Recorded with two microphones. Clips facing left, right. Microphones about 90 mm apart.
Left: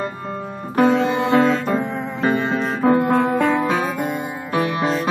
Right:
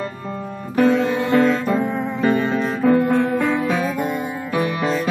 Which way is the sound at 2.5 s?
35° left (ahead or behind).